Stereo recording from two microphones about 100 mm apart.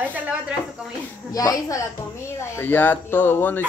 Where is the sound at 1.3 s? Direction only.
35° left (ahead or behind).